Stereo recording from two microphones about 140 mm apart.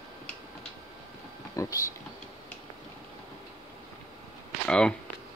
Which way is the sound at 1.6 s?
25° left (ahead or behind).